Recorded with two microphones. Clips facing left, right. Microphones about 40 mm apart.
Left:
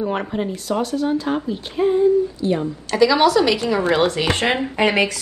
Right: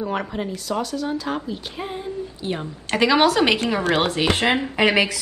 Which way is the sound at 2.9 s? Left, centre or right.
Right.